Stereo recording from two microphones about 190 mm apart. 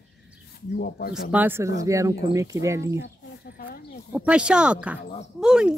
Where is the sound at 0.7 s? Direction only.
55° left (ahead or behind).